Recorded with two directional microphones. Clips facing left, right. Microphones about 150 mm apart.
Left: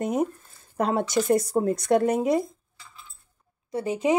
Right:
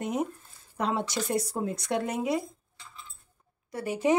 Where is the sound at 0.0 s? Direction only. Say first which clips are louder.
Left 5 dB; 45° left (ahead or behind).